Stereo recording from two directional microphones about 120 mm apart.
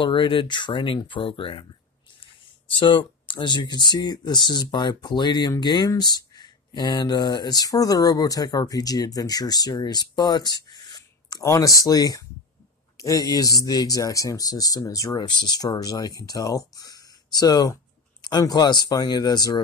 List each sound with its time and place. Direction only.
0.0 s speech: 45° left (ahead or behind)
2.7 s speech: 45° left (ahead or behind)